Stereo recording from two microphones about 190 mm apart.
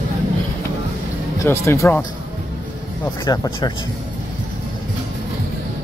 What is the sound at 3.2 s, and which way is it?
Speech, 20° left (ahead or behind).